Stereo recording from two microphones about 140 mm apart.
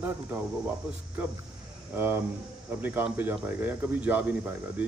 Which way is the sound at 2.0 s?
15° right (ahead or behind).